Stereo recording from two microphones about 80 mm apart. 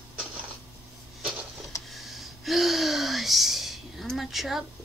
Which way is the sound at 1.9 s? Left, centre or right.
Centre.